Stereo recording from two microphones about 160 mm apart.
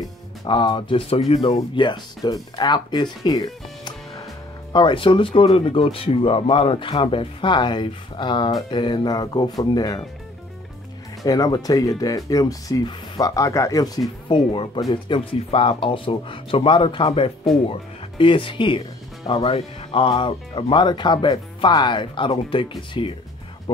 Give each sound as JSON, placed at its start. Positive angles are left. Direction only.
{"t": 0.5, "sound": "speech", "side_deg": 30}
{"t": 1.5, "sound": "speech", "side_deg": 25}
{"t": 11.2, "sound": "speech", "side_deg": 20}